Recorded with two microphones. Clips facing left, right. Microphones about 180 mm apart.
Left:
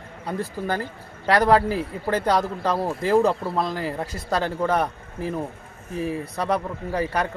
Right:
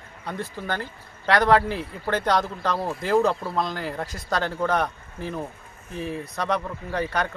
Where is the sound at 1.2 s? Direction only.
5° left (ahead or behind).